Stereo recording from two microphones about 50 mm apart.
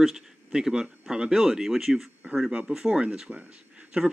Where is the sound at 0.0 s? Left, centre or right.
Centre.